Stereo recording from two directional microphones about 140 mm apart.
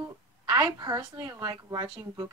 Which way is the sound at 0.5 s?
30° right (ahead or behind).